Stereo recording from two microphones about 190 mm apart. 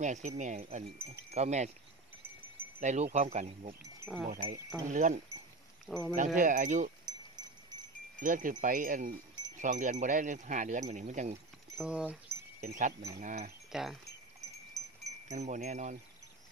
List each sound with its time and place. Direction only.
0.0 s speech: 40° right (ahead or behind)
2.8 s speech: 40° right (ahead or behind)
4.3 s speech: 40° right (ahead or behind)
5.9 s speech: centre (ahead or behind)
6.1 s speech: 40° right (ahead or behind)
8.2 s speech: 45° right (ahead or behind)
11.8 s speech: 5° right (ahead or behind)
12.5 s speech: 40° right (ahead or behind)
13.7 s speech: centre (ahead or behind)
14.8 s wind chime: 20° right (ahead or behind)
15.2 s speech: 40° right (ahead or behind)